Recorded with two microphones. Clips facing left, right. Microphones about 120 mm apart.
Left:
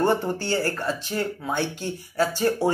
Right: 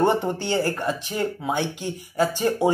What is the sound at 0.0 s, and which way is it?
Speech, 20° right (ahead or behind).